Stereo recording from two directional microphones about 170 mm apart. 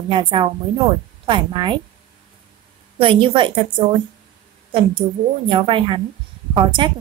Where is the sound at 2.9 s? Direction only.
30° right (ahead or behind).